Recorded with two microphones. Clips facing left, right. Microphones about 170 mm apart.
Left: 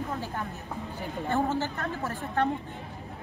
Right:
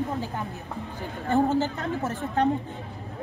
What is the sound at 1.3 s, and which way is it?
A woman's voice, 15° right (ahead or behind).